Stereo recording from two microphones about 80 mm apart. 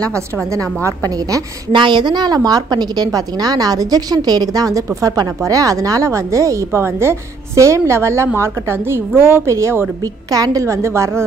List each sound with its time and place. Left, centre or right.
0.8 s a woman's voice: right
1.7 s a woman's voice: right
10.0 s speech: right